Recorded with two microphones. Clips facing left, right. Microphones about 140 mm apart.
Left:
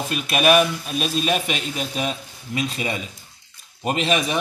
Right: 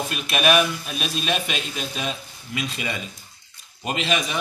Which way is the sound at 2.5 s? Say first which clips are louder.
Left 4 dB; 30° left (ahead or behind).